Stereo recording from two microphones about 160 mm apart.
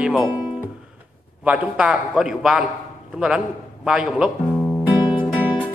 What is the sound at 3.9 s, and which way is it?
Speech, 5° right (ahead or behind).